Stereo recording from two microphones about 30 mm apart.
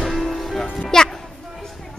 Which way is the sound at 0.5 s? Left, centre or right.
Centre.